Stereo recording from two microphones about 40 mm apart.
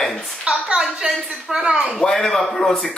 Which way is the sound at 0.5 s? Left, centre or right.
Centre.